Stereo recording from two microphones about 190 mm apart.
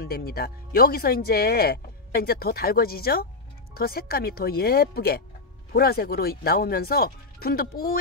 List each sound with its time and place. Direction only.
0.0 s speech: 55° left (ahead or behind)